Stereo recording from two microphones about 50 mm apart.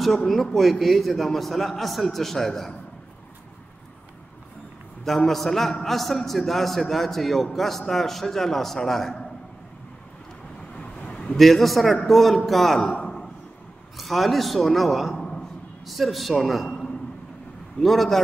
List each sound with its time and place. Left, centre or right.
0.3 s a man's voice: centre
5.0 s a man's voice: centre
10.8 s vehicle: centre
11.3 s a man's voice: centre
12.8 s a sound: centre
13.9 s a man's voice: centre
15.8 s a man's voice: centre
16.6 s a sound: centre
17.8 s a man's voice: centre